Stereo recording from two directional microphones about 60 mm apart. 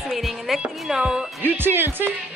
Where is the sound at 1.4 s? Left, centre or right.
Right.